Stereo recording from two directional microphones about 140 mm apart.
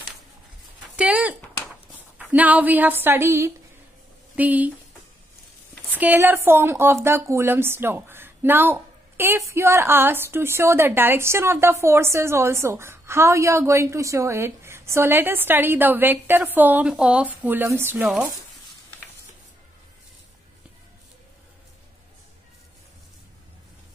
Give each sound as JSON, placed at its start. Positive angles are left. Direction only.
{"t": 0.9, "sound": "a sound", "side_deg": -10}
{"t": 2.3, "sound": "a woman's voice", "side_deg": -10}
{"t": 5.9, "sound": "a woman's voice", "side_deg": -15}